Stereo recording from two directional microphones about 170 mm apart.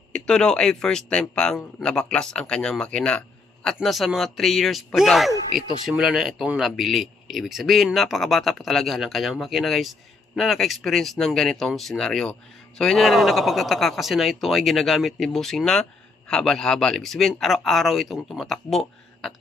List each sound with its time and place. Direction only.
0.1 s speech: 5° left (ahead or behind)